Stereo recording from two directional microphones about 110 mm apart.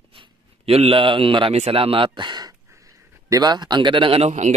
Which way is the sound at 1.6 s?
60° right (ahead or behind).